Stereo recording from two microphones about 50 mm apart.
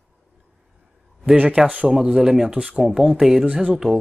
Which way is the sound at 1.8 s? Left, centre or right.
Centre.